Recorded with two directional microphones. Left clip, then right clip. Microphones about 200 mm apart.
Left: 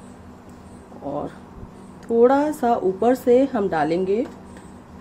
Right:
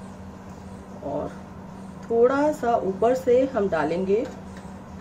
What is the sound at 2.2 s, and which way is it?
A woman's voice, 50° left (ahead or behind).